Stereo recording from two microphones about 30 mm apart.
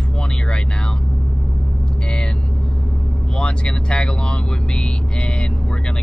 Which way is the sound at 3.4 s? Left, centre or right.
Left.